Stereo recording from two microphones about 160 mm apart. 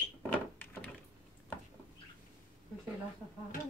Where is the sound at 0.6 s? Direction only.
10° left (ahead or behind).